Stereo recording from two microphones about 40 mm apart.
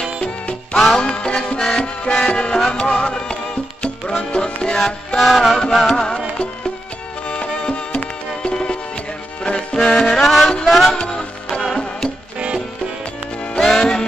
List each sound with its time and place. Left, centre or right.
0.2 s music: left
5.2 s music: centre
7.2 s music: left
9.4 s music: left
10.2 s music: centre
10.9 s music: centre
13.6 s music: centre